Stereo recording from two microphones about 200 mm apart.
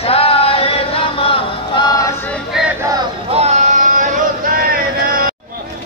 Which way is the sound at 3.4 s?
35° right (ahead or behind).